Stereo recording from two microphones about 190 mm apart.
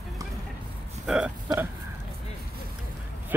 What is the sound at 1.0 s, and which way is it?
Speech, 5° right (ahead or behind).